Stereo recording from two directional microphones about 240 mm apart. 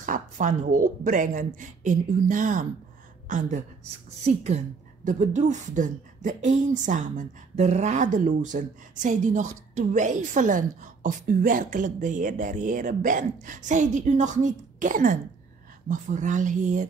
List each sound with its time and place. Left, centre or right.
0.0 s speech: right
5.0 s speech: right